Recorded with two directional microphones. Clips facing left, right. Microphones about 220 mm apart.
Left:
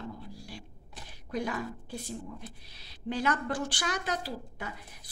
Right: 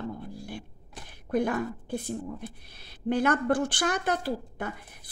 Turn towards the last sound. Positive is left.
turn(degrees=-55)  # may be behind; listen again after turning